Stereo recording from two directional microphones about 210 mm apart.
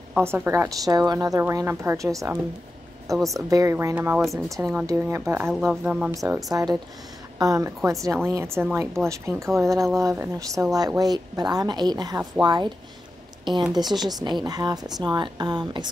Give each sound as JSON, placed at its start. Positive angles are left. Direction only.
{"t": 0.1, "sound": "a woman's voice", "side_deg": -10}
{"t": 3.3, "sound": "a woman's voice", "side_deg": -15}
{"t": 5.5, "sound": "a woman's voice", "side_deg": 0}
{"t": 13.9, "sound": "speech", "side_deg": -20}